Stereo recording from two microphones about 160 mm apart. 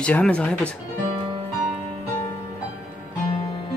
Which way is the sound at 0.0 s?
5° left (ahead or behind).